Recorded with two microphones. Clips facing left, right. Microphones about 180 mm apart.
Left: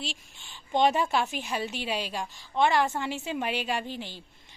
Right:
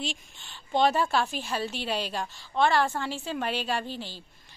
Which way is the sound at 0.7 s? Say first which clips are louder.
Even; 20° left (ahead or behind).